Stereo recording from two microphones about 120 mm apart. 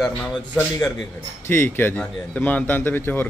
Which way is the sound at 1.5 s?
15° left (ahead or behind).